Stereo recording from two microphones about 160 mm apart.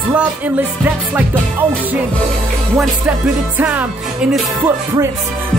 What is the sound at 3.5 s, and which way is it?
Music, 10° right (ahead or behind).